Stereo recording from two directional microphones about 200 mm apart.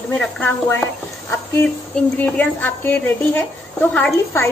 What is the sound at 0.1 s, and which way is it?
Speech, 5° left (ahead or behind).